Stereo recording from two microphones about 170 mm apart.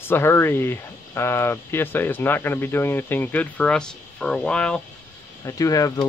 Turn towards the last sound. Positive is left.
turn(degrees=20)  # may be behind; listen again after turning